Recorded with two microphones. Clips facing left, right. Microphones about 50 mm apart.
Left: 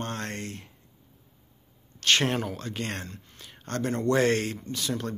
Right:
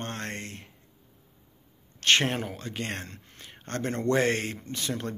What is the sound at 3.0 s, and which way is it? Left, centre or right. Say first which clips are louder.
Speech: left 1 dB; right.